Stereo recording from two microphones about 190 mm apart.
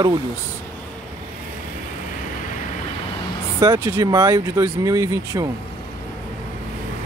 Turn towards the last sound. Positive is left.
turn(degrees=-20)  # may be behind; listen again after turning